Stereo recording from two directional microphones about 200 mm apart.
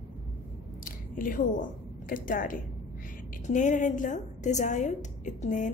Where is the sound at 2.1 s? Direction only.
45° left (ahead or behind).